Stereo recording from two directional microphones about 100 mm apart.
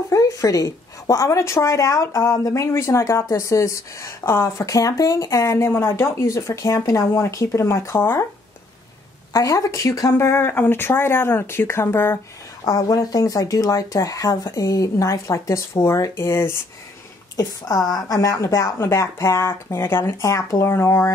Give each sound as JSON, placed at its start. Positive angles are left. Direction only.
{"t": 0.1, "sound": "a woman's voice", "side_deg": 35}
{"t": 9.3, "sound": "speech", "side_deg": 35}
{"t": 12.6, "sound": "a woman's voice", "side_deg": 35}
{"t": 17.4, "sound": "a woman's voice", "side_deg": 40}